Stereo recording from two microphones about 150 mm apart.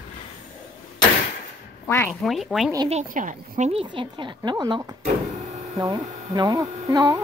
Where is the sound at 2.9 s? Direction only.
55° right (ahead or behind).